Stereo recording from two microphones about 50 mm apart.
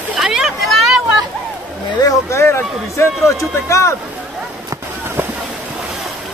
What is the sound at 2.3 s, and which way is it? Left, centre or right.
Speech, left.